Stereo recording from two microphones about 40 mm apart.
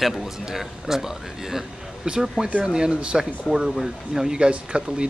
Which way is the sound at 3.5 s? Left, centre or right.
Left.